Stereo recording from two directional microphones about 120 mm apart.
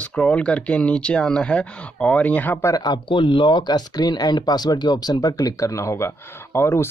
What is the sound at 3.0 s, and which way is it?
Speech, 45° left (ahead or behind).